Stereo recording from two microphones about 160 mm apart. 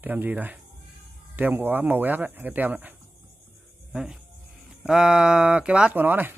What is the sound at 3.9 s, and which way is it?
A man's voice, 5° right (ahead or behind).